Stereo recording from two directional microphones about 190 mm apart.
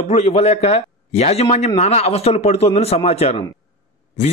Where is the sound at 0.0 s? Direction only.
35° left (ahead or behind).